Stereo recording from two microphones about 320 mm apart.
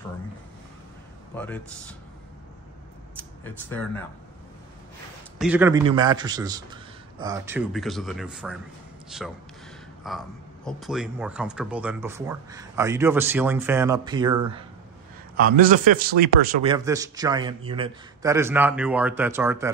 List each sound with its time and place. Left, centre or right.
1.3 s speech: centre
3.2 s speech: centre
5.4 s speech: centre
15.3 s a man's voice: right
16.6 s speech: centre